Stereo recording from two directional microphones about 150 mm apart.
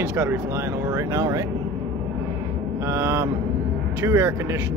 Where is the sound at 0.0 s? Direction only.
20° right (ahead or behind).